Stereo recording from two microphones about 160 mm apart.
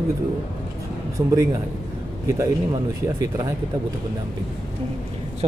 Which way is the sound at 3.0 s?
20° right (ahead or behind).